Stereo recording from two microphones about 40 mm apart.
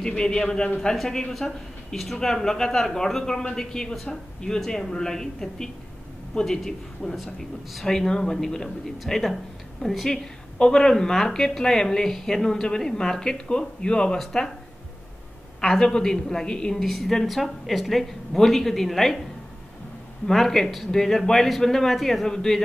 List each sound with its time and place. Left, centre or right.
0.0 s a man's voice: centre
0.9 s a woman's voice: centre
15.8 s speech: centre
16.8 s a woman's voice: centre
20.2 s speech: centre